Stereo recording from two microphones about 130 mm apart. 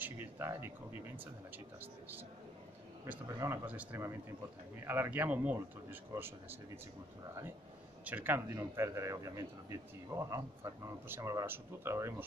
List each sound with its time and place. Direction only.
0.0 s a man's voice: 20° right (ahead or behind)
3.3 s speech: 25° right (ahead or behind)
3.6 s a man's voice: 15° right (ahead or behind)
8.0 s speech: 10° right (ahead or behind)